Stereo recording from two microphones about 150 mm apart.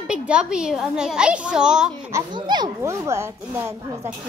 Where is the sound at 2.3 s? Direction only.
30° right (ahead or behind).